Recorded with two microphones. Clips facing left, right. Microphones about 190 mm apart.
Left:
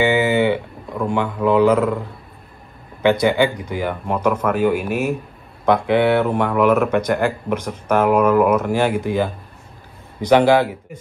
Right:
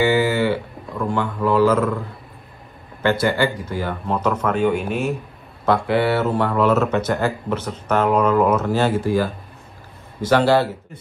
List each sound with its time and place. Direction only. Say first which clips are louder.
0.0 s speech: left 1 dB; 20° left (ahead or behind)